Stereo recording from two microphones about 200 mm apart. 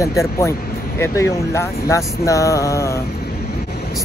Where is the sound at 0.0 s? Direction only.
15° left (ahead or behind).